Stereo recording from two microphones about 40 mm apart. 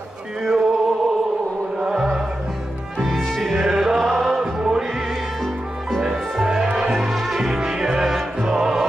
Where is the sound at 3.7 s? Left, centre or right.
Centre.